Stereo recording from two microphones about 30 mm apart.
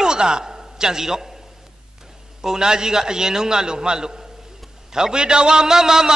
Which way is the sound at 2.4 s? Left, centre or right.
Right.